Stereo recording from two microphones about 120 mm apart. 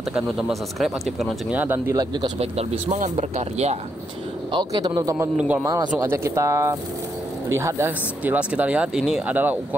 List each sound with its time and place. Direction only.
0.1 s speech: centre (ahead or behind)
1.6 s speech: 20° right (ahead or behind)
2.0 s speech: 35° right (ahead or behind)
2.3 s speech: 60° right (ahead or behind); by 3.1 s 75° right (ahead or behind)
3.2 s speech: 65° right (ahead or behind)
4.5 s speech: 40° right (ahead or behind); by 9.8 s 15° right (ahead or behind)